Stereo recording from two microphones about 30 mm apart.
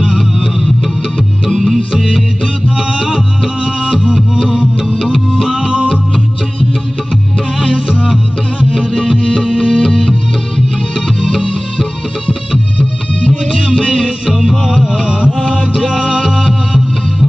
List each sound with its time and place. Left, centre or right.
3.6 s music: centre
8.6 s music: left
12.7 s music: left
13.6 s music: left
14.3 s music: centre
15.0 s mantra: left
16.0 s music: left